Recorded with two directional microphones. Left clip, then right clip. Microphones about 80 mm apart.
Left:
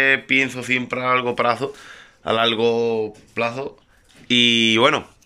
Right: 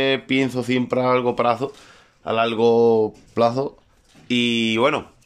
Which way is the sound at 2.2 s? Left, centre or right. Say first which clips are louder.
Left 2 dB; centre.